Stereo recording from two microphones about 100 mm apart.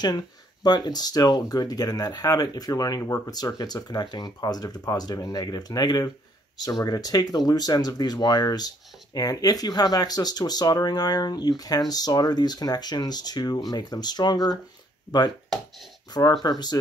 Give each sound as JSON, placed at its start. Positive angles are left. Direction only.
{"t": 0.7, "sound": "speech", "side_deg": 45}